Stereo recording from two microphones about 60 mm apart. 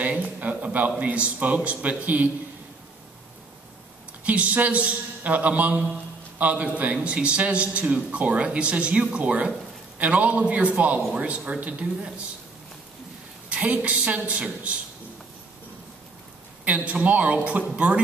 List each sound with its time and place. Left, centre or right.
0.2 s a man's voice: right
4.2 s a man's voice: right
13.5 s a sound: right
13.8 s a man's voice: right
16.6 s a man's voice: right